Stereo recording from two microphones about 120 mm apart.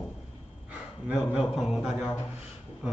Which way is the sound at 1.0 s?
5° right (ahead or behind).